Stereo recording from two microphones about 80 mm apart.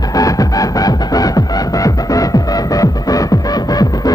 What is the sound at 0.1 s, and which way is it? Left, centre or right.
Music, left.